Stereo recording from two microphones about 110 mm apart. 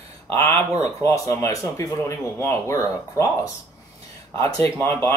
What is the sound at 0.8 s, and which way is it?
Speech, 25° left (ahead or behind).